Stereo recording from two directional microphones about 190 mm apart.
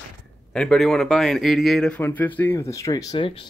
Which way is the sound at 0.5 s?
5° left (ahead or behind).